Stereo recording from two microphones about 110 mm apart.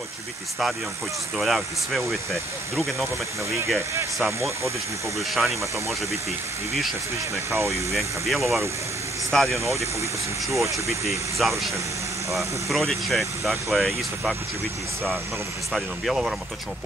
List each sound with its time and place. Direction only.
1.4 s speech: centre (ahead or behind)
3.9 s speech: 25° right (ahead or behind)
5.3 s speech: centre (ahead or behind)
7.9 s speech: centre (ahead or behind)
10.5 s speech: 30° right (ahead or behind)
10.9 s speech: centre (ahead or behind)
15.7 s speech: centre (ahead or behind)